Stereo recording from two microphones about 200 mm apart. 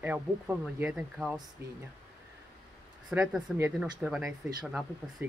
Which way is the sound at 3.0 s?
5° right (ahead or behind).